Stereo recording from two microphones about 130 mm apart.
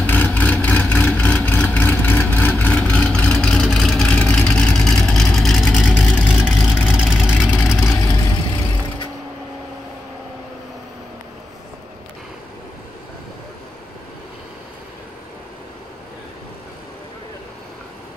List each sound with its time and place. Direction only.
0.0 s vehicle: 15° left (ahead or behind)
6.2 s vehicle: 5° right (ahead or behind)
7.8 s vehicle: 25° left (ahead or behind)